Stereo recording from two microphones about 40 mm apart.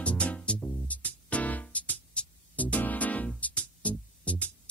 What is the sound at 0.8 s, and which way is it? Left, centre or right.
Music, left.